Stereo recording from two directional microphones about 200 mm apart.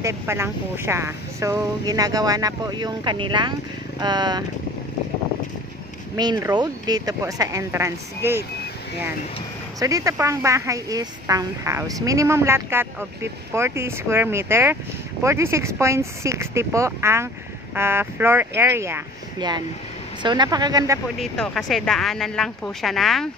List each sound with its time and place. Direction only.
0.0 s speech: 10° right (ahead or behind)
6.1 s a woman's voice: 20° right (ahead or behind)
9.8 s a woman's voice: 15° right (ahead or behind)
21.2 s speech: centre (ahead or behind)